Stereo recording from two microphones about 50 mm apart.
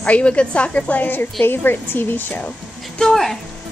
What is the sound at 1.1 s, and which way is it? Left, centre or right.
A woman's voice, left.